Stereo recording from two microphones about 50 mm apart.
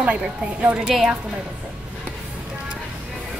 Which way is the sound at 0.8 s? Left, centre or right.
Centre.